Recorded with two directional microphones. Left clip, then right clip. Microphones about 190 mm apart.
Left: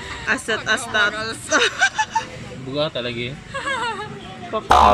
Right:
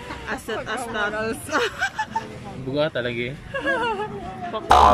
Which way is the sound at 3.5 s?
50° right (ahead or behind).